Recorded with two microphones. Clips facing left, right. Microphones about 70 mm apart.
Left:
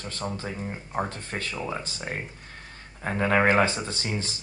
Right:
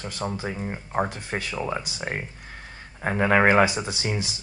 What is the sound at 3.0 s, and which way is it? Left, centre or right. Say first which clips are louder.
Speech: right 3 dB; centre.